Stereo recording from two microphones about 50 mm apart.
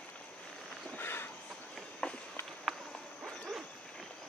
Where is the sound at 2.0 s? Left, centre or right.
Centre.